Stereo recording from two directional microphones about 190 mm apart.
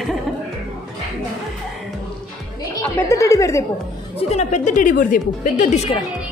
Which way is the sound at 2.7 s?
15° left (ahead or behind).